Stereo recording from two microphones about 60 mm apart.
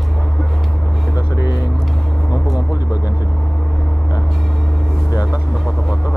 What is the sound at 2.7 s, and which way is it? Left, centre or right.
Speech, left.